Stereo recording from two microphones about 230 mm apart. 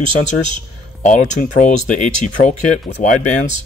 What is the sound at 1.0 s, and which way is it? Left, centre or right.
Speech, left.